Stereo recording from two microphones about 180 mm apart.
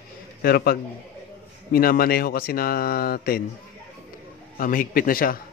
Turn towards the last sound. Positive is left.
turn(degrees=55)  # may be behind; listen again after turning